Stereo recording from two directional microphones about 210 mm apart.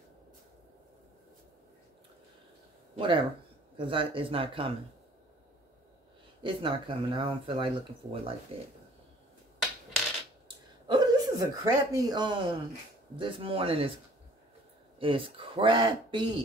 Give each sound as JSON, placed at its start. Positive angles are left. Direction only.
{"t": 3.0, "sound": "speech", "side_deg": -25}
{"t": 6.4, "sound": "speech", "side_deg": -25}
{"t": 10.9, "sound": "speech", "side_deg": -20}
{"t": 15.0, "sound": "speech", "side_deg": -25}